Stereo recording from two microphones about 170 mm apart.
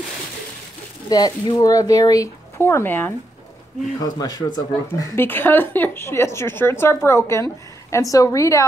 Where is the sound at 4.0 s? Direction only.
20° left (ahead or behind).